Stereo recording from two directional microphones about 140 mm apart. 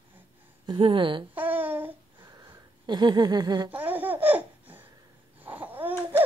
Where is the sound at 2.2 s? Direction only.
30° right (ahead or behind).